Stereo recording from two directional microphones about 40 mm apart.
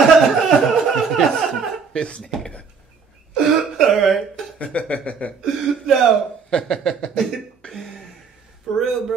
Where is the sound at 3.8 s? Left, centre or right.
Centre.